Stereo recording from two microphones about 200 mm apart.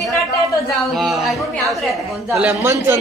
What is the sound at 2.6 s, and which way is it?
Speech, 15° right (ahead or behind).